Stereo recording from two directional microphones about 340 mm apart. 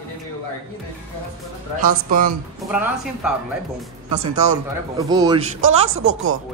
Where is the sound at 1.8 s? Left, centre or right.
Right.